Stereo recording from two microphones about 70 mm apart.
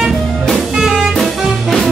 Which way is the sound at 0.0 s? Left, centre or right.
Centre.